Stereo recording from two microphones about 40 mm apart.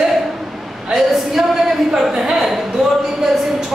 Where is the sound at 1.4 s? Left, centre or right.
Centre.